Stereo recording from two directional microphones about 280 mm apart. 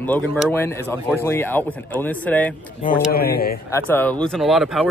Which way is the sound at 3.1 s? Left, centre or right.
Left.